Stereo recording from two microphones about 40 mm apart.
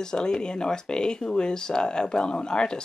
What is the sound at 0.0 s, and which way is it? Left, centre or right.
Speech, centre.